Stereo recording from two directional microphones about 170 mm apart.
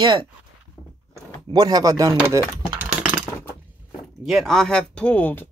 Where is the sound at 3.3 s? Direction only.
15° left (ahead or behind).